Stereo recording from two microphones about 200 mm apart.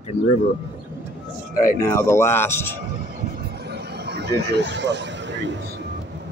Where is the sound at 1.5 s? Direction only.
45° left (ahead or behind).